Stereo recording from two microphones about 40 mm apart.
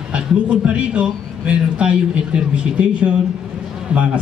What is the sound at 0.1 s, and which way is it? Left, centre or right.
A man's voice, right.